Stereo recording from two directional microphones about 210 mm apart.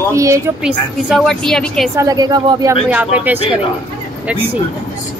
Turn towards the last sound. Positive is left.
turn(degrees=-10)  # may be behind; listen again after turning